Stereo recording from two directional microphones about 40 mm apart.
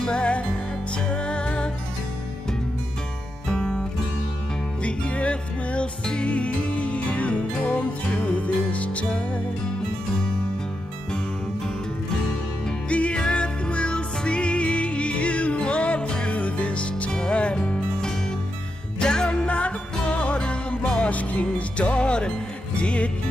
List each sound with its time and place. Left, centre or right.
0.0 s music: left
3.4 s music: centre
4.8 s music: left
12.9 s music: left
19.4 s music: left
21.1 s music: left